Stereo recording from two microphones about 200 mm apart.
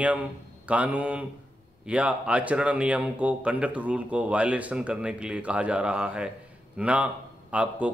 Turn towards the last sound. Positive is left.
turn(degrees=-5)  # may be behind; listen again after turning